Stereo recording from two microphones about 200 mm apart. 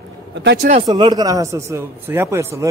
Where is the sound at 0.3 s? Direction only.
60° right (ahead or behind).